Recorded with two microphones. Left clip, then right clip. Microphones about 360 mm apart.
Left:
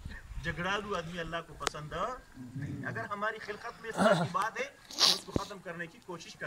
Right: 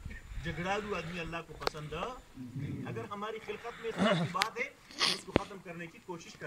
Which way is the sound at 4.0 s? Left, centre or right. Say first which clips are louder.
Left 4 dB; left.